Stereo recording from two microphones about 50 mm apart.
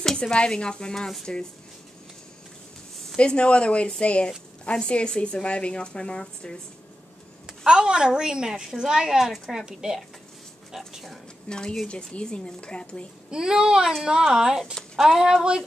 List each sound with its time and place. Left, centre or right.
0.0 s speech: centre
3.2 s a woman's voice: left
7.4 s a woman's voice: centre
9.3 s a woman's voice: centre
9.7 s a woman's voice: centre
11.4 s a woman's voice: centre
13.3 s a woman's voice: centre